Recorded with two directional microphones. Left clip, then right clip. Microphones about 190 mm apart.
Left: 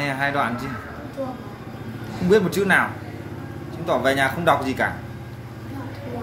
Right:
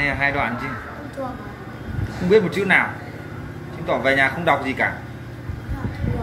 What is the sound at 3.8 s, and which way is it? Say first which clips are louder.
Speech: right 2 dB; 20° left (ahead or behind).